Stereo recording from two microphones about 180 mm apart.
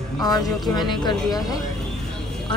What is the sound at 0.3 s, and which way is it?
Speech, 25° left (ahead or behind).